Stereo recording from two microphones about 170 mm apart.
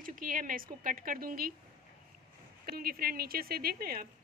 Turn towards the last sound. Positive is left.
turn(degrees=-60)  # may be behind; listen again after turning